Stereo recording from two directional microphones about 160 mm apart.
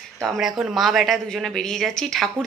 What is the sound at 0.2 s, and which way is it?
Speech, centre (ahead or behind).